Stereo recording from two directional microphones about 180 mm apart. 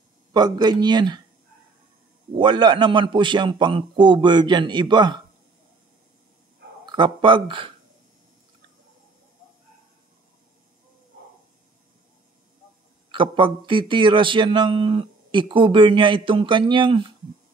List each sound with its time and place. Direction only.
0.3 s a man's voice: 25° right (ahead or behind)
2.3 s a man's voice: 25° right (ahead or behind)
6.9 s a man's voice: 25° right (ahead or behind)
13.1 s a man's voice: 30° right (ahead or behind)